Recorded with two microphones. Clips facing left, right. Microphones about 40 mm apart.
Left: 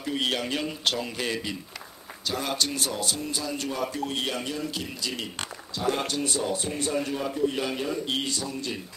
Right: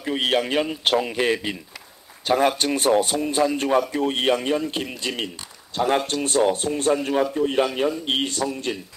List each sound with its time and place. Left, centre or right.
0.0 s a man's voice: right